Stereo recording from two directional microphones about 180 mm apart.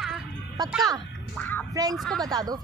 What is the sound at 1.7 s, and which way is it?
Speech, 20° right (ahead or behind).